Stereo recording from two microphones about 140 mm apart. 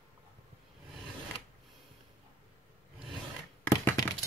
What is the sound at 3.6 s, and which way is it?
Thunk, 15° left (ahead or behind).